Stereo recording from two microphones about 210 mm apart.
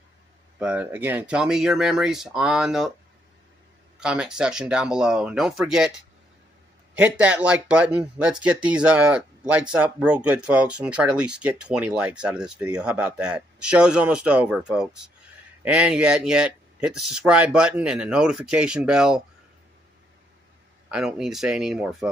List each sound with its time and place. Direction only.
0.6 s speech: 5° right (ahead or behind)
4.0 s speech: 5° right (ahead or behind)
7.0 s speech: 5° right (ahead or behind)
20.9 s speech: centre (ahead or behind)